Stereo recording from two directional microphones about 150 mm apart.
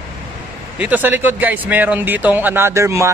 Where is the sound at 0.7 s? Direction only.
10° right (ahead or behind).